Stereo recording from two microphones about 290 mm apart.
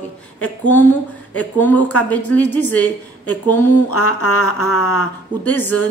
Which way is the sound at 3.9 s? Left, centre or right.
Left.